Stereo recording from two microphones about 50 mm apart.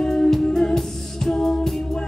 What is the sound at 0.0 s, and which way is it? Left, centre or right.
Music, centre.